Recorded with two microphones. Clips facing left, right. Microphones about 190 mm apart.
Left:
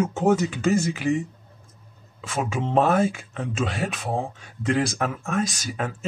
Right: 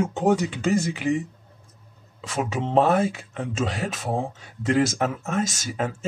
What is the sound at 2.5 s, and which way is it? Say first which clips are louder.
Speech: right 1 dB; 20° right (ahead or behind).